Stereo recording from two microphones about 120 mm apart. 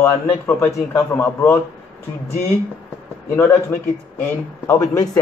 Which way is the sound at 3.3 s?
20° left (ahead or behind).